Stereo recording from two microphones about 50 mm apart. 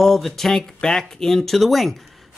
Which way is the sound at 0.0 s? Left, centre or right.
Centre.